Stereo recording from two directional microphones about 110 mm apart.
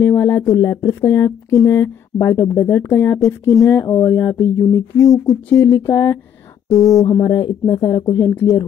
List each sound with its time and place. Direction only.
0.0 s speech: 20° left (ahead or behind)
6.9 s speech: 35° left (ahead or behind)
8.3 s speech: 25° left (ahead or behind)